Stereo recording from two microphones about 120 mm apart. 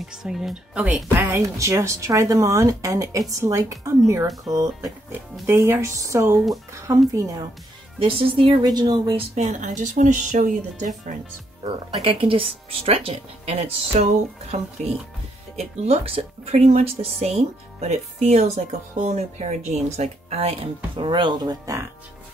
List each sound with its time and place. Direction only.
0.1 s speech: 5° right (ahead or behind)
1.2 s speech: 25° right (ahead or behind)
8.0 s speech: 50° right (ahead or behind)
8.6 s speech: 35° right (ahead or behind)
9.3 s speech: 90° right
11.6 s speech: 50° right (ahead or behind)